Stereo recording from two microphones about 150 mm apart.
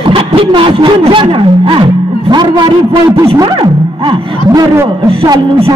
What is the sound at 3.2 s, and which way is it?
Music, 30° right (ahead or behind).